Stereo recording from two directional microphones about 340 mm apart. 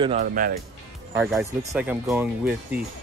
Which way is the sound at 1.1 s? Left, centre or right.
Centre.